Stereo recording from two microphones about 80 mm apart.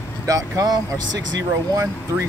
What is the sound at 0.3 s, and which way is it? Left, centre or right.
Speech, right.